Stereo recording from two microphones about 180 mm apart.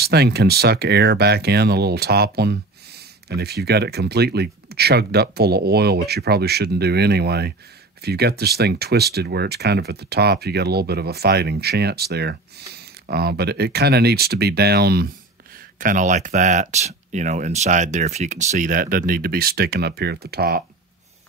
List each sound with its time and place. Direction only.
0.0 s speech: 65° right (ahead or behind)
15.8 s speech: 45° right (ahead or behind)